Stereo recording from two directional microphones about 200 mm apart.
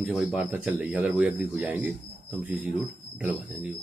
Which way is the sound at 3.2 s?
5° right (ahead or behind).